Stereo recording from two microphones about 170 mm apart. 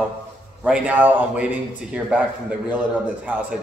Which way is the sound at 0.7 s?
10° right (ahead or behind).